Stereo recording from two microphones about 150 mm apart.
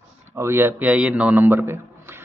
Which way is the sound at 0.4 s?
15° right (ahead or behind).